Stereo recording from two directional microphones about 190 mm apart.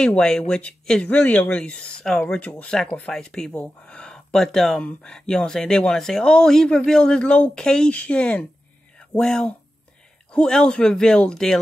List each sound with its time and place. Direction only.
0.0 s speech: 5° left (ahead or behind)